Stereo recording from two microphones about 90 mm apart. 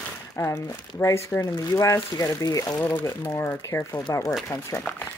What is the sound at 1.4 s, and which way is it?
Speech, 45° left (ahead or behind).